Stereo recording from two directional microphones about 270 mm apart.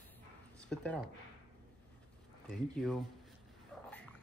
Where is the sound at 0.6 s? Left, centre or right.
Centre.